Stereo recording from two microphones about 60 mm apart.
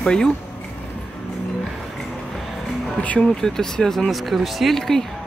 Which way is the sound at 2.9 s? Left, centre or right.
Left.